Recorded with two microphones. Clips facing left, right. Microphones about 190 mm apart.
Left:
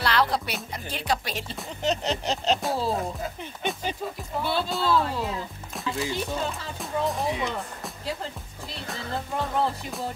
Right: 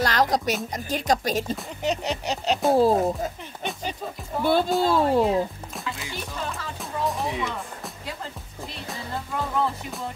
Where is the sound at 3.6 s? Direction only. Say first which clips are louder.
Left 2 dB; centre (ahead or behind).